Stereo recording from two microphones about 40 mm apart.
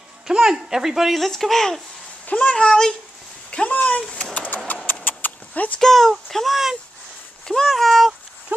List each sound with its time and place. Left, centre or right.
0.3 s speech: centre
1.3 s speech: centre
2.2 s a child's voice: left
2.5 s speech: centre
3.4 s a sound: left
3.7 s speech: left
4.3 s a sound: left
4.9 s vehicle: left
5.5 s speech: left
5.8 s speech: centre
8.5 s clip-clop: right